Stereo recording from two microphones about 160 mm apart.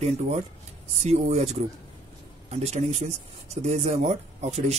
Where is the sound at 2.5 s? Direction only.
45° right (ahead or behind).